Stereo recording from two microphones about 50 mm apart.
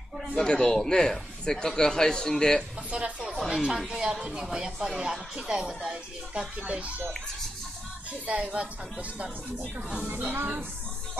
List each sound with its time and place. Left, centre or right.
0.4 s a man's voice: centre
2.9 s speech: right
3.3 s a sound: centre
3.7 s speech: centre
8.1 s speech: right
10.0 s speech: right